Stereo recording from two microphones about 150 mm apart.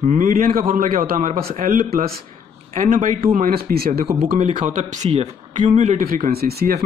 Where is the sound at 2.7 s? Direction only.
60° right (ahead or behind); by 4.0 s 90° right.